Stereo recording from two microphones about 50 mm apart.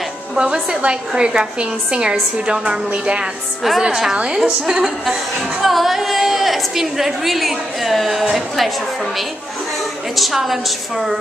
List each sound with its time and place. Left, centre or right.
0.4 s a woman's voice: centre
3.6 s a woman's voice: centre
5.6 s a woman's voice: centre
10.1 s a woman's voice: centre